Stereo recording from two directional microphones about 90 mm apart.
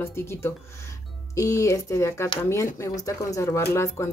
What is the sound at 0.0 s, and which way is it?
Speech, 30° left (ahead or behind).